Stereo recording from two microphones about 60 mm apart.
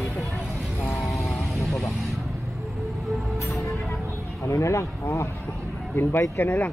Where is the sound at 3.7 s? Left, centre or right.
Centre.